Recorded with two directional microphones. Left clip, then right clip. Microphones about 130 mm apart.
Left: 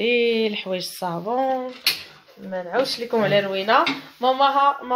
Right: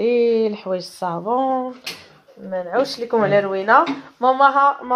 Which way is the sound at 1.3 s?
5° left (ahead or behind).